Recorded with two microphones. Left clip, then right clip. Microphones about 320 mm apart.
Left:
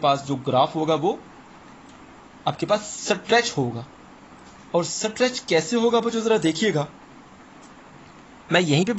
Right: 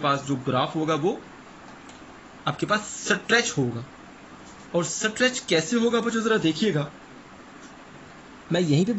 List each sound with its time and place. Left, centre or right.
0.0 s a man's voice: centre
2.4 s a man's voice: centre
4.7 s a man's voice: centre
8.5 s a man's voice: left